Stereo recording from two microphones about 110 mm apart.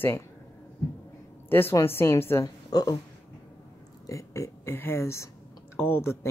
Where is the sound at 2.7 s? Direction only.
35° left (ahead or behind).